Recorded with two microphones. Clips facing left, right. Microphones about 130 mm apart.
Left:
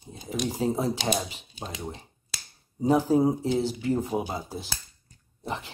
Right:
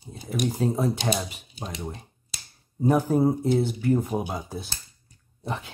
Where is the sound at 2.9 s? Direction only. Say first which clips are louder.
Even; 15° left (ahead or behind).